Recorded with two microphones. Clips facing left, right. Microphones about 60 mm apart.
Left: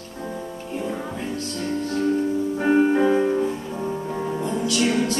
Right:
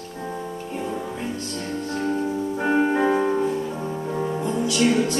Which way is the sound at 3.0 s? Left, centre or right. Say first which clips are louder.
Left 1 dB; centre.